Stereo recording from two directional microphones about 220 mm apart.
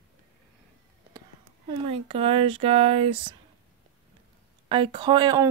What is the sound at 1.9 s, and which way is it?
Speech, 25° right (ahead or behind).